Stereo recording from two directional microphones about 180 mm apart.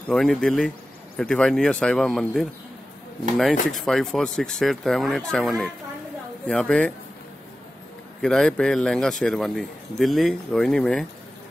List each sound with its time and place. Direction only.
0.1 s speech: centre (ahead or behind)
3.7 s speech: centre (ahead or behind)
8.2 s speech: 5° left (ahead or behind)